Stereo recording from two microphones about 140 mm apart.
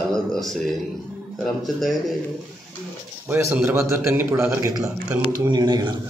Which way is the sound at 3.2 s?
15° right (ahead or behind).